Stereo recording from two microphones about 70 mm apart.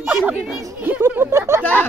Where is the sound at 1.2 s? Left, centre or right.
Right.